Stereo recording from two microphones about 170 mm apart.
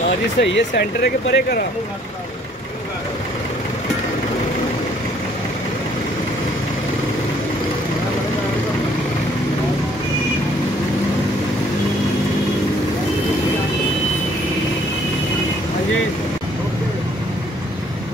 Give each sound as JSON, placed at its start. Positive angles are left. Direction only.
{"t": 0.4, "sound": "speech", "side_deg": 85}